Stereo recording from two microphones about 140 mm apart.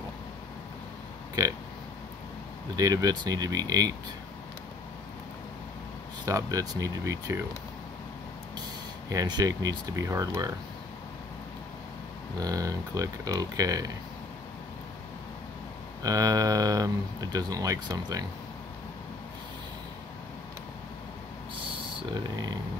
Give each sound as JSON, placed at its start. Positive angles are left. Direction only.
{"t": 2.7, "sound": "speech", "side_deg": -25}
{"t": 6.2, "sound": "speech", "side_deg": -25}
{"t": 9.1, "sound": "speech", "side_deg": -25}
{"t": 12.4, "sound": "speech", "side_deg": -25}
{"t": 16.0, "sound": "speech", "side_deg": -25}
{"t": 22.1, "sound": "speech", "side_deg": -30}